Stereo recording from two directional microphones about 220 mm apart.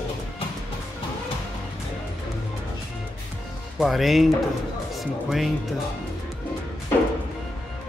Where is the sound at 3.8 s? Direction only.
Centre (ahead or behind).